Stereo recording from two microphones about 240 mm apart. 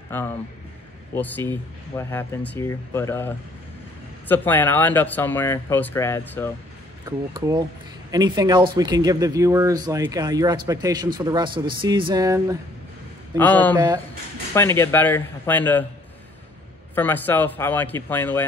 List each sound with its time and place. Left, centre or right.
0.1 s speech: centre
7.1 s speech: centre
13.4 s speech: centre
13.7 s speech: centre
14.5 s speech: centre
16.9 s speech: centre